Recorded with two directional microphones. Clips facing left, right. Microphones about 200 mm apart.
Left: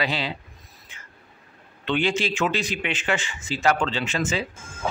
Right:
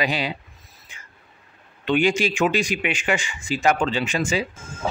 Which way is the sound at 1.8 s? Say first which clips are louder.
Right 4 dB; 15° right (ahead or behind).